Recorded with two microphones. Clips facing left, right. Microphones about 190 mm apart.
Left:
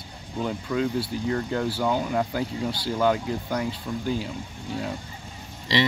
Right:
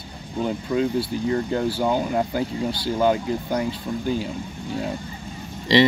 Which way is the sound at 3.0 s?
25° right (ahead or behind).